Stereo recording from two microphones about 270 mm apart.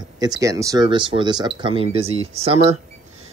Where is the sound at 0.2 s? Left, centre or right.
Centre.